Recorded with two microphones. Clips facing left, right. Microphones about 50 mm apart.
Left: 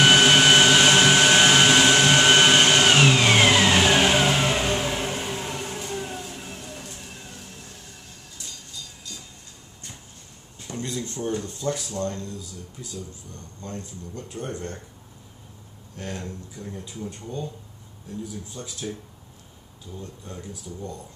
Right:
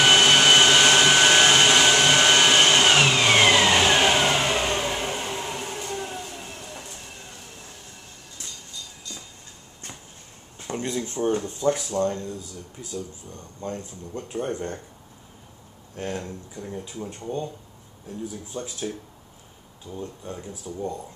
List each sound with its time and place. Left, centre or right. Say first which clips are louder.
0.0 s vacuum cleaner: left 1 dB; centre
10.7 s a sound: right 3 dB; right
11.4 s speech: right 5 dB; right
13.6 s speech: right 4 dB; right
16.2 s speech: right 1 dB; centre
18.5 s speech: right 4 dB; right
19.9 s speech: right 4 dB; right